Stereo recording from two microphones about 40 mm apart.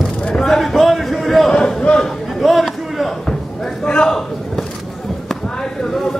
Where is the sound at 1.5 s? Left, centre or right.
Left.